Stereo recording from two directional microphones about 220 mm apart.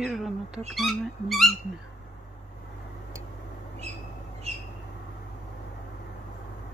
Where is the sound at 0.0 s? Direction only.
Centre (ahead or behind).